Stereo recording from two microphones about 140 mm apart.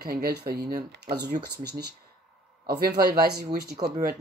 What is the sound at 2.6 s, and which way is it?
Speech, 90° right.